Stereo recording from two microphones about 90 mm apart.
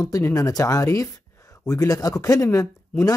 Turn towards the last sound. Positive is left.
turn(degrees=35)  # may be behind; listen again after turning